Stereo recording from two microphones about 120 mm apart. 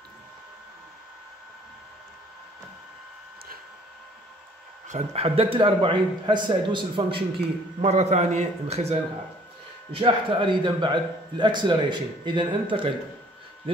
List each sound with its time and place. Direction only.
4.8 s a man's voice: 65° right (ahead or behind); by 7.2 s 45° right (ahead or behind)
7.8 s a man's voice: 70° right (ahead or behind)
9.9 s speech: 45° right (ahead or behind)